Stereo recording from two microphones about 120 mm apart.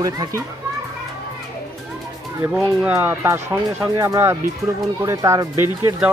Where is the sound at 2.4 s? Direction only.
5° right (ahead or behind).